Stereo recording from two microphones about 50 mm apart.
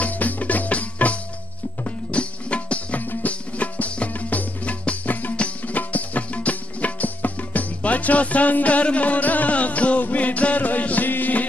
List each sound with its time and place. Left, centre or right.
0.0 s music: left